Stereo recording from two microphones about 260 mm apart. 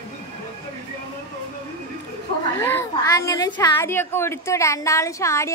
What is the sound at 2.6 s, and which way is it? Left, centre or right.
A woman's voice, centre.